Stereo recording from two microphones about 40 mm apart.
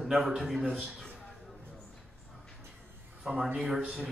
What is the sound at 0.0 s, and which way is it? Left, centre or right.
A man's voice, centre.